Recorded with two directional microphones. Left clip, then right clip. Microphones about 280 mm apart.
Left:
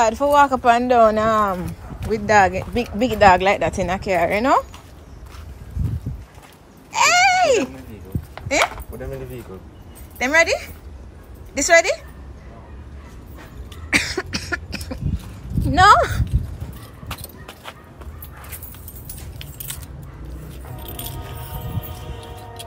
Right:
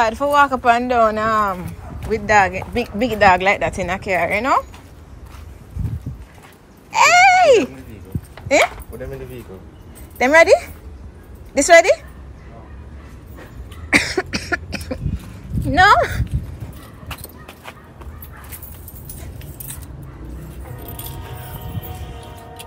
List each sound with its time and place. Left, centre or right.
0.0 s a woman's voice: centre
6.9 s a sound: centre
8.4 s dog: centre
8.9 s speech: left
10.1 s a woman's voice: centre
13.9 s cough: centre
15.7 s a woman's voice: centre
17.1 s a sound: centre
20.8 s music: centre